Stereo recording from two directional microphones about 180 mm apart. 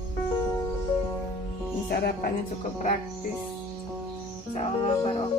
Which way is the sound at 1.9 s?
60° left (ahead or behind).